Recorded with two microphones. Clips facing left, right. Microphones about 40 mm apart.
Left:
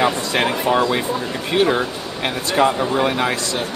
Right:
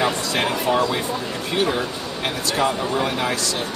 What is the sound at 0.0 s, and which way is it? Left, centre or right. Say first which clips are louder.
Speech: left 3 dB; centre.